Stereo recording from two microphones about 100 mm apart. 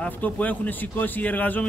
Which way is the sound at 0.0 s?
15° left (ahead or behind).